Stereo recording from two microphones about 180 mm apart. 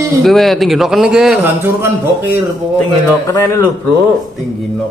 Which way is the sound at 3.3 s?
15° left (ahead or behind).